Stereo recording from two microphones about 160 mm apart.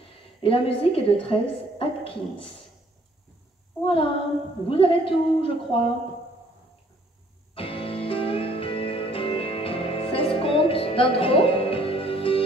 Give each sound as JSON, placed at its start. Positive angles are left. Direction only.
{"t": 0.4, "sound": "a woman's voice", "side_deg": 35}
{"t": 3.8, "sound": "a woman's voice", "side_deg": 35}
{"t": 7.5, "sound": "music", "side_deg": 35}